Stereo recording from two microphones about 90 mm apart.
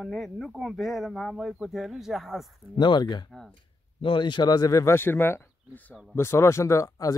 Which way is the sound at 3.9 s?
75° left (ahead or behind).